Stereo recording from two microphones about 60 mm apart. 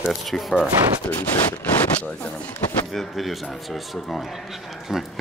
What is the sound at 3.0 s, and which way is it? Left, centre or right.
A man's voice, centre.